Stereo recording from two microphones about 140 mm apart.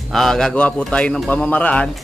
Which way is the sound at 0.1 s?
Centre (ahead or behind).